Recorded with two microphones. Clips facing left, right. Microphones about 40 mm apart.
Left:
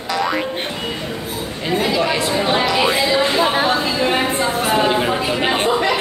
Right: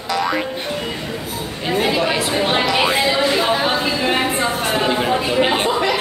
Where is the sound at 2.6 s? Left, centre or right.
Centre.